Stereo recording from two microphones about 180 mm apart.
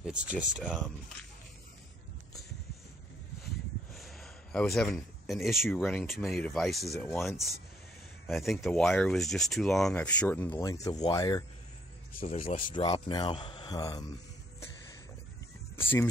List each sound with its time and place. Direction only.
0.0 s speech: 5° right (ahead or behind)
3.9 s a sound: centre (ahead or behind)
6.0 s speech: centre (ahead or behind)
8.3 s speech: centre (ahead or behind); by 11.4 s 20° left (ahead or behind)
12.1 s speech: 50° left (ahead or behind)
12.4 s speech: 30° left (ahead or behind)
15.7 s a sound: 10° left (ahead or behind)